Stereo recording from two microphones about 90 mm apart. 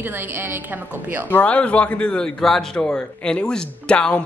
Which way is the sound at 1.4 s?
15° left (ahead or behind).